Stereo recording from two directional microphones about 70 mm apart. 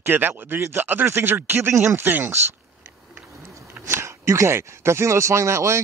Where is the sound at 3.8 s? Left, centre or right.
Right.